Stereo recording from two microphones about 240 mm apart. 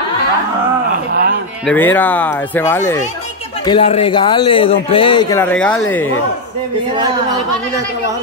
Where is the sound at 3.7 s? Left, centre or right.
Left; by 6.1 s centre.